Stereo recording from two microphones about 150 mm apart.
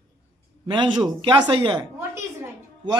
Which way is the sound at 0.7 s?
35° right (ahead or behind).